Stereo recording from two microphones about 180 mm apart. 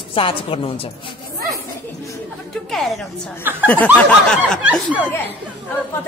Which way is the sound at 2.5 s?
Centre (ahead or behind).